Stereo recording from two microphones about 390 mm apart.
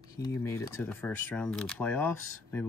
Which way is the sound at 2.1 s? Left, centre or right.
Left.